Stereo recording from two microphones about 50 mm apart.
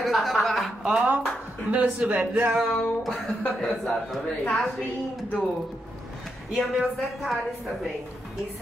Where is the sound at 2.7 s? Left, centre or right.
Centre.